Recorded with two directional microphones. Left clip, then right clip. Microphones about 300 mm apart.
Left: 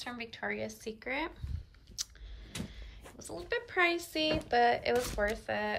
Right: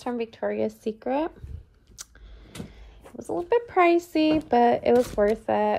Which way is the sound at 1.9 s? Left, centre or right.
Centre.